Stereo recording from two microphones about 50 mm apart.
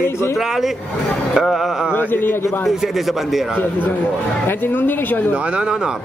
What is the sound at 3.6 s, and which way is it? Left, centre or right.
A woman's voice, left.